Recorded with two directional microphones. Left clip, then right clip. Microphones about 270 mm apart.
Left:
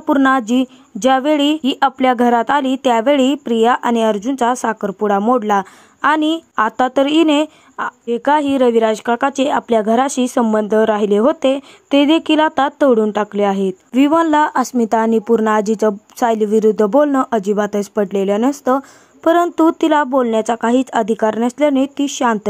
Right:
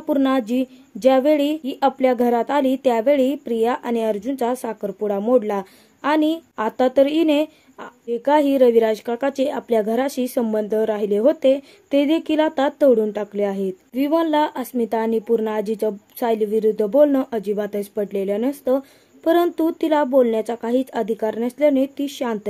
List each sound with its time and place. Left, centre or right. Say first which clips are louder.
0.1 s speech: left 6 dB; centre